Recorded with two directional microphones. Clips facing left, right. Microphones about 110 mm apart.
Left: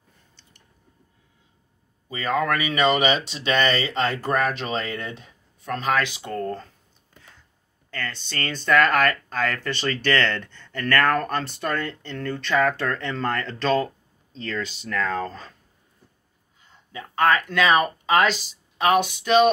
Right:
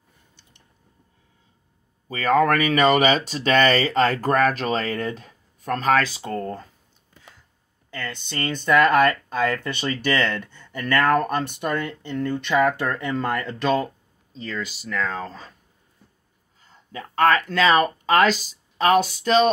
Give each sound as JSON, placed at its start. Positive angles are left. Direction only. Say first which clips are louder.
{"t": 2.0, "sound": "speech", "louder": "right 5 dB", "side_deg": -45}
{"t": 6.4, "sound": "speech", "louder": "left 2 dB", "side_deg": -15}
{"t": 7.9, "sound": "speech", "louder": "right 1 dB", "side_deg": -15}
{"t": 16.9, "sound": "speech", "louder": "right 2 dB", "side_deg": -40}